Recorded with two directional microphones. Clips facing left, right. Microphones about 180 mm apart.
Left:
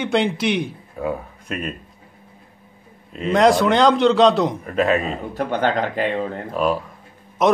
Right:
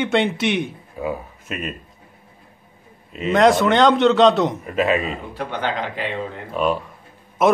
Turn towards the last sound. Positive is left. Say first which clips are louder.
# even
turn(degrees=-5)  # may be behind; listen again after turning